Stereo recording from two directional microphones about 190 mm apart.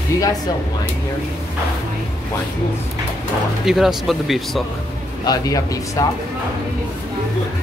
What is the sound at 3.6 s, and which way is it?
Speech, centre (ahead or behind).